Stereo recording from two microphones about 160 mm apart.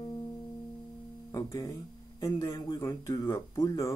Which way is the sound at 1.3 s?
25° left (ahead or behind).